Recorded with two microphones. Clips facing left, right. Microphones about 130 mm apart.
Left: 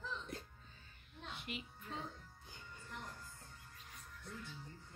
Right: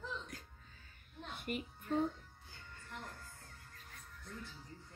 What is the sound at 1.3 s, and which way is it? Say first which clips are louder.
Child singing: right 9 dB; 50° right (ahead or behind).